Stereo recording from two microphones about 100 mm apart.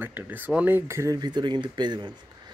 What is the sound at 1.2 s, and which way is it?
Speech, 45° right (ahead or behind).